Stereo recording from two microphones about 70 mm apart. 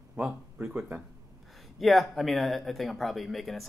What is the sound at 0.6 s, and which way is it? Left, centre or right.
Speech, right.